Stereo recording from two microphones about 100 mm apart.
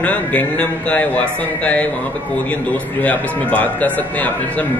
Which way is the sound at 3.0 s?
15° left (ahead or behind).